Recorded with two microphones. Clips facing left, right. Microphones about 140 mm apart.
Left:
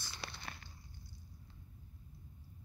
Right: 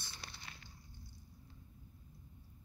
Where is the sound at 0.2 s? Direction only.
75° left (ahead or behind).